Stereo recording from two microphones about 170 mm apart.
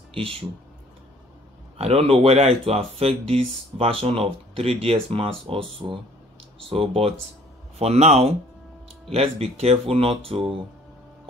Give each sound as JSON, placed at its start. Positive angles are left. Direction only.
{"t": 1.8, "sound": "speech", "side_deg": -35}